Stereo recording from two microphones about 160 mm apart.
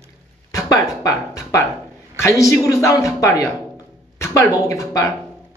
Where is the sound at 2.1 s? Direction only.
20° left (ahead or behind).